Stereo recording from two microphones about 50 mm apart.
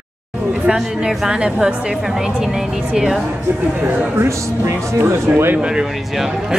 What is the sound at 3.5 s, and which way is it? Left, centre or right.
Speech, right.